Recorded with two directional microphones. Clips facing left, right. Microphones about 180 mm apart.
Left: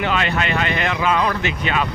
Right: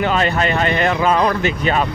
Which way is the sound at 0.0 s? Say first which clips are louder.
Right 4 dB; 40° right (ahead or behind).